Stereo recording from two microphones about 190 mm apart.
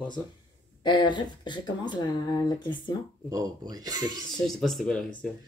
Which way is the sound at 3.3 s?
20° right (ahead or behind).